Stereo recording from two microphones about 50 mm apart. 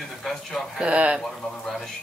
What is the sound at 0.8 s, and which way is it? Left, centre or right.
Speech, right.